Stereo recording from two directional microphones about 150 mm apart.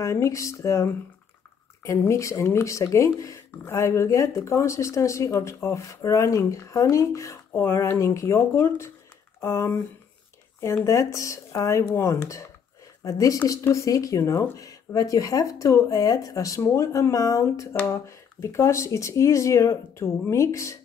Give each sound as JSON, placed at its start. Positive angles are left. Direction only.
{"t": 0.0, "sound": "speech", "side_deg": 20}